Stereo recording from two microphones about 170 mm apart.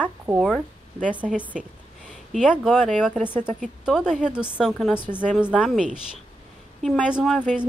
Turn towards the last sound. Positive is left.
turn(degrees=-5)  # may be behind; listen again after turning